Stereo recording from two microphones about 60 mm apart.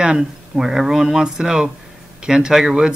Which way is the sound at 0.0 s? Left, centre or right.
Centre.